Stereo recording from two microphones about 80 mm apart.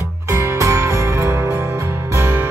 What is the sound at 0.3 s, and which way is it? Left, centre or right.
Music, right.